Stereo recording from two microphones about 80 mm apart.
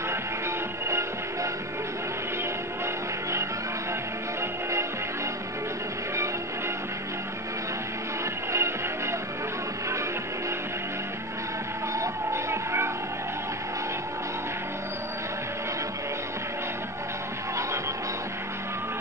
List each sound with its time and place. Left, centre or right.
0.8 s music: right
4.4 s music: right
8.5 s music: right
12.0 s music: right